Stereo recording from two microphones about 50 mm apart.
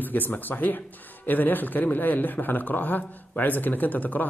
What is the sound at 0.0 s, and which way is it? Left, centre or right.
A man's voice, left.